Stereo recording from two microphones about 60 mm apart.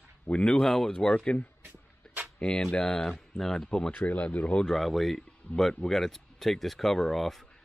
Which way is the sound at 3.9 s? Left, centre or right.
Left.